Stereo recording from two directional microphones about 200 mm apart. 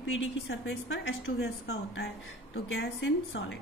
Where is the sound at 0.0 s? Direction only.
70° left (ahead or behind).